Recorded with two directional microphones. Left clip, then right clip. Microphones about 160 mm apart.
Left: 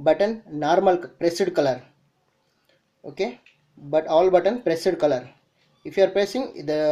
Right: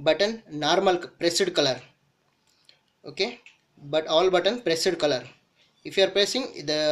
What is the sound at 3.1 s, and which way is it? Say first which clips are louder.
Speech: left 1 dB; 15° left (ahead or behind).